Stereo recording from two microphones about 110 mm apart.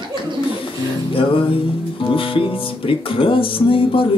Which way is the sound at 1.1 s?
50° left (ahead or behind).